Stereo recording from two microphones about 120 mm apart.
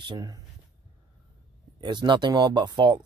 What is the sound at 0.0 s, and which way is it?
Speech, 35° right (ahead or behind).